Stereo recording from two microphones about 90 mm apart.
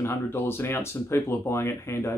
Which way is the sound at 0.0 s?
25° left (ahead or behind).